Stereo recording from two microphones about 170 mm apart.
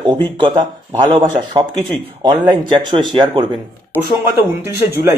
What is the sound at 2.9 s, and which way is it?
Speech, 25° right (ahead or behind).